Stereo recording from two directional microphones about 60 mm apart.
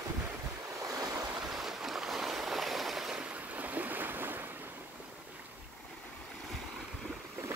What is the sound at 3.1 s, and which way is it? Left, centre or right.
Waves, right.